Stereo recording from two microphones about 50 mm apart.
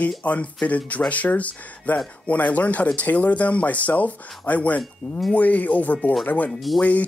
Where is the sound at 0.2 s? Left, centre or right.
Left.